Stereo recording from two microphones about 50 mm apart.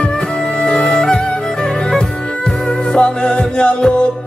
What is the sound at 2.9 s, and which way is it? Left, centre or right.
Music, centre.